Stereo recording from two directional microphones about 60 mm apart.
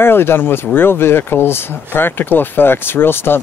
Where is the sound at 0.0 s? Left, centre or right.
Left.